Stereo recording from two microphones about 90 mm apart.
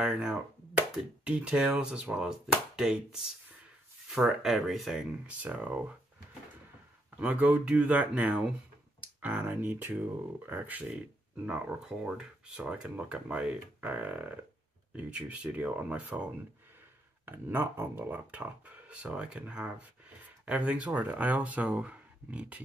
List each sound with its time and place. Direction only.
0.0 s speech: 5° right (ahead or behind)
5.2 s speech: 15° right (ahead or behind)
7.2 s speech: 15° right (ahead or behind)
17.3 s speech: 25° right (ahead or behind)